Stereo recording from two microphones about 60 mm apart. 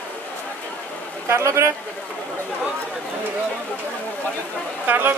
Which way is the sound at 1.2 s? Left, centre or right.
Right.